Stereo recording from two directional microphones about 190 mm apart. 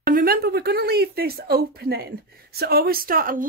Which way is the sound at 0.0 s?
50° right (ahead or behind).